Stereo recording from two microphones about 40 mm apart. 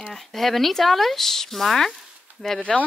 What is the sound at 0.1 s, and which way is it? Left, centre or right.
Speech, centre.